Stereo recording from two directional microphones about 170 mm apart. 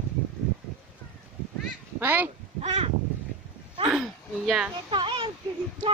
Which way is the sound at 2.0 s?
10° right (ahead or behind).